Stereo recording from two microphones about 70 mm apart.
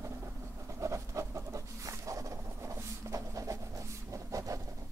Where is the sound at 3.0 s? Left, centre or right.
Right.